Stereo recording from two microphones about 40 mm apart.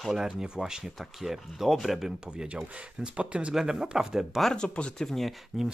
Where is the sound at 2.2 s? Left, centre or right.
Centre.